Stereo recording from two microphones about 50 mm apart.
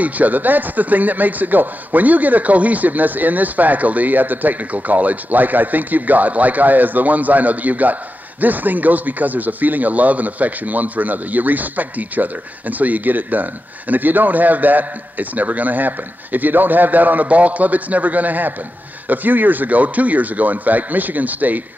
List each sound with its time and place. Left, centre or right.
0.0 s speech: right